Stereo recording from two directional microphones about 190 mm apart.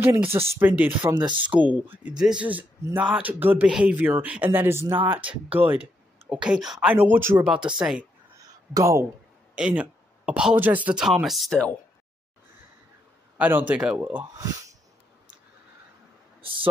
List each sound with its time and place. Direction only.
0.0 s speech: 10° right (ahead or behind)
1.1 s speech: 25° right (ahead or behind)
1.4 s speech: 10° right (ahead or behind)
8.7 s speech: 15° right (ahead or behind); by 11.7 s centre (ahead or behind)
13.4 s speech: 10° right (ahead or behind)
16.3 s a sound: 30° right (ahead or behind)